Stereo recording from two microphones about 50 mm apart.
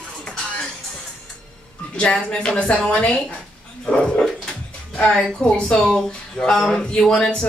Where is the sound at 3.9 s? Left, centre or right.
Centre.